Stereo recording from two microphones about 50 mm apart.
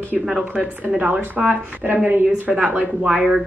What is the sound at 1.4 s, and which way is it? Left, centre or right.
Speech, right.